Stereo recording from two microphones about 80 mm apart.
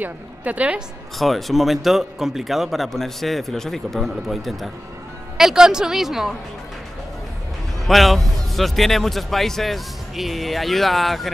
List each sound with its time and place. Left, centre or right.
0.0 s a woman's voice: centre
1.1 s speech: centre
7.8 s speech: centre